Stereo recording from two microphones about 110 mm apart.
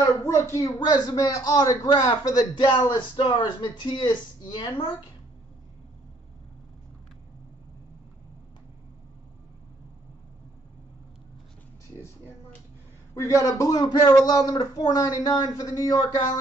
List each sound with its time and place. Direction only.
0.2 s a man's voice: 25° left (ahead or behind); by 4.9 s 45° left (ahead or behind)
13.1 s a man's voice: 25° left (ahead or behind)